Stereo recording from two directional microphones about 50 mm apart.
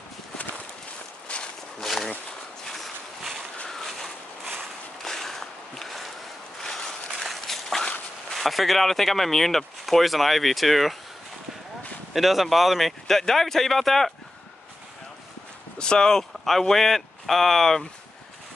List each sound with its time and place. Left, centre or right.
1.3 s walk: left
1.8 s bee: centre
3.6 s a sound: centre
8.3 s speech: centre
12.1 s speech: centre
15.8 s speech: centre